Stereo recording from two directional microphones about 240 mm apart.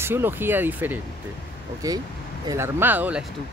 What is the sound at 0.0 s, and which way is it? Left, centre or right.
Speech, centre.